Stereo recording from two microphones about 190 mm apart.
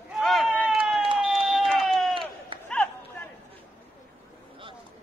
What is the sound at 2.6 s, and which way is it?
Chatter, 5° left (ahead or behind).